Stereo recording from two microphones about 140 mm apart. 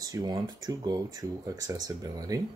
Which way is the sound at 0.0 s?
30° right (ahead or behind).